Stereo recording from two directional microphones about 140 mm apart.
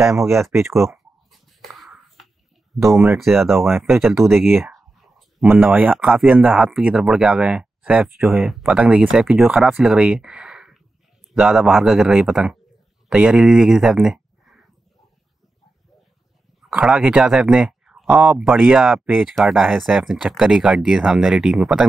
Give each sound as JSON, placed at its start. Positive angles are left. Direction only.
{"t": 0.3, "sound": "speech", "side_deg": 0}
{"t": 0.9, "sound": "a sound", "side_deg": 0}
{"t": 2.7, "sound": "speech", "side_deg": 0}
{"t": 3.6, "sound": "speech", "side_deg": -15}
{"t": 3.9, "sound": "speech", "side_deg": 0}
{"t": 5.5, "sound": "speech", "side_deg": -10}
{"t": 16.6, "sound": "speech", "side_deg": -5}